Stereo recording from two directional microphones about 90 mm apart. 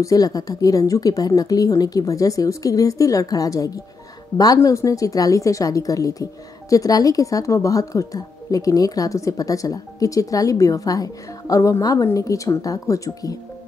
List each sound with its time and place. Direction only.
0.0 s speech: 40° left (ahead or behind)